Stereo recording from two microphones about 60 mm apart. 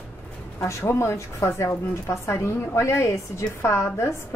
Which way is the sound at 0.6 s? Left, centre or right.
Left.